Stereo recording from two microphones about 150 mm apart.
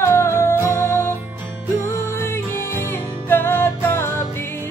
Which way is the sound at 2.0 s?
15° left (ahead or behind).